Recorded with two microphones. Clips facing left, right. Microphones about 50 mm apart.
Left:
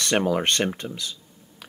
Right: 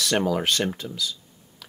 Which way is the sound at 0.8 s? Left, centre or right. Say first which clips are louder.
Left 2 dB; left.